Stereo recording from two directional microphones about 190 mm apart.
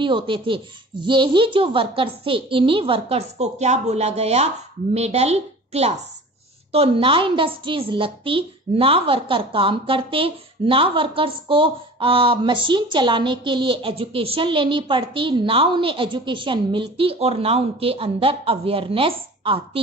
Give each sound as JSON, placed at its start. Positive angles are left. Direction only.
{"t": 0.0, "sound": "a woman's voice", "side_deg": -25}